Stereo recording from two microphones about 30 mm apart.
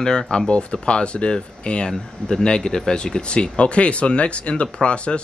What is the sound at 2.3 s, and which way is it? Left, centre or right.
Speech, left.